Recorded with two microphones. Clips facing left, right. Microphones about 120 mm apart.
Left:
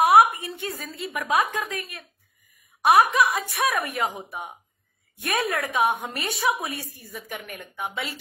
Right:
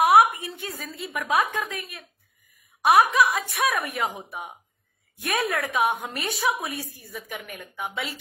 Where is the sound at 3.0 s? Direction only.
Centre (ahead or behind).